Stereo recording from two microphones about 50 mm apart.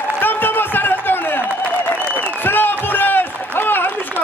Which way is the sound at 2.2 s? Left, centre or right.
Left.